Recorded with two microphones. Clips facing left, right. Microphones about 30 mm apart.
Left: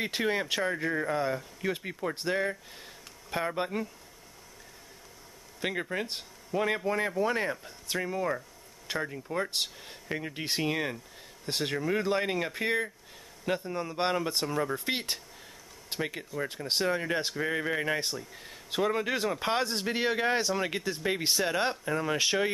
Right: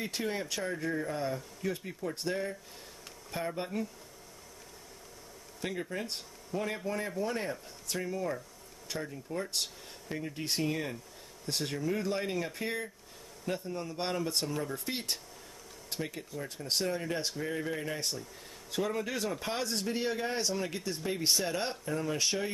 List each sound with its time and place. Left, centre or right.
0.0 s speech: left
5.6 s speech: left
20.3 s speech: left